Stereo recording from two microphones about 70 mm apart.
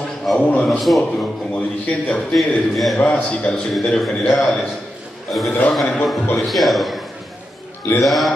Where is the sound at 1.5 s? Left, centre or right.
Left.